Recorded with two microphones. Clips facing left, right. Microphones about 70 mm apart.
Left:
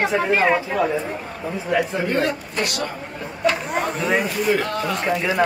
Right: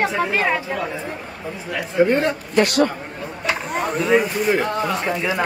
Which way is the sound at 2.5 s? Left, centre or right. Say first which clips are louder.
Right 8 dB; right.